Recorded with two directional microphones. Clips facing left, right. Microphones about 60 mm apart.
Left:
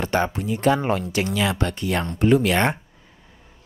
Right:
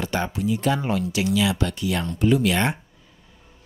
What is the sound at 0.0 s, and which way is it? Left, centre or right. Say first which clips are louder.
Speech: left 2 dB; left.